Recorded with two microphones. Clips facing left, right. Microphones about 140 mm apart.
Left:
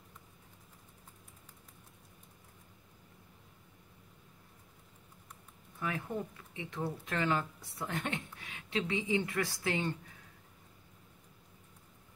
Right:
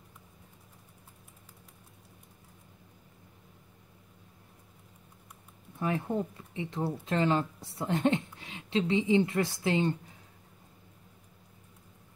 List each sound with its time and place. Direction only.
5.8 s speech: 30° right (ahead or behind)